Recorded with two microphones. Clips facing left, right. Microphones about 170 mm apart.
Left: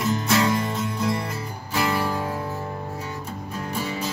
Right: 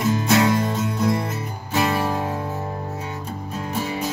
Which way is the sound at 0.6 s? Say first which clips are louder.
Right 3 dB; 25° right (ahead or behind).